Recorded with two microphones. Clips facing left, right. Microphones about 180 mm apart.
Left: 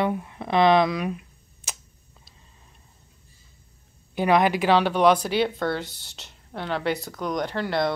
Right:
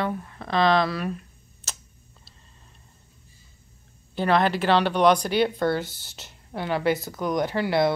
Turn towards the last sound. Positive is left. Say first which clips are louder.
# right 3 dB
turn(degrees=-5)  # may be behind; listen again after turning